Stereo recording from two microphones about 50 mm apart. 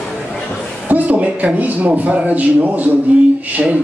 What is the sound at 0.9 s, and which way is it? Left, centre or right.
A man's voice, right.